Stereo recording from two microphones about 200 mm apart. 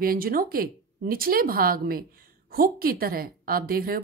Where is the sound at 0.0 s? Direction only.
45° right (ahead or behind).